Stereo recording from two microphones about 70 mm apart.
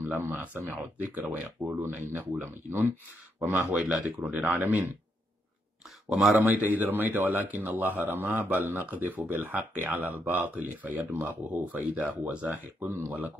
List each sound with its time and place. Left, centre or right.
0.1 s speech: right
3.7 s speech: centre
4.4 s speech: right
6.0 s speech: centre
6.4 s speech: right